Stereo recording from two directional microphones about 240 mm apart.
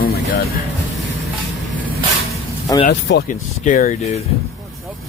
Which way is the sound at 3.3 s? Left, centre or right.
Left.